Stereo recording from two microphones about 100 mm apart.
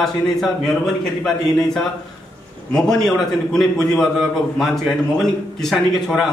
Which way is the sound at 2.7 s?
5° left (ahead or behind).